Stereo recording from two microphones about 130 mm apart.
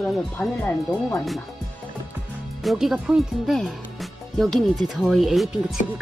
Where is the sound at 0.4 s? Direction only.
20° left (ahead or behind).